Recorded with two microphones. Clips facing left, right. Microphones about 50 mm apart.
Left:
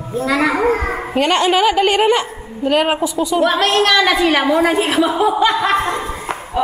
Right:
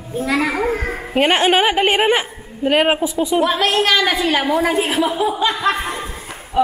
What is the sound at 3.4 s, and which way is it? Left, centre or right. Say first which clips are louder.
A woman's voice: left 4 dB; centre.